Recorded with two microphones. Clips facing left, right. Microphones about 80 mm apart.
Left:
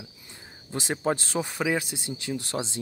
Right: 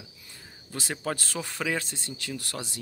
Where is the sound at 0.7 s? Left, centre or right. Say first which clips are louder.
Left 5 dB; left.